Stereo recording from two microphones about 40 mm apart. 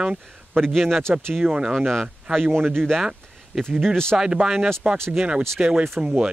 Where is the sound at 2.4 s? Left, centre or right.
Right.